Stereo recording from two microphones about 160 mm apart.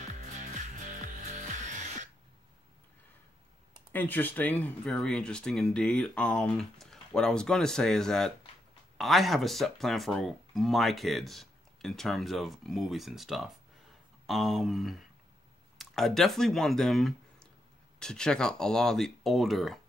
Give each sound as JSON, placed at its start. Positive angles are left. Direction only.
{"t": 1.6, "sound": "music", "side_deg": -50}
{"t": 3.9, "sound": "speech", "side_deg": 10}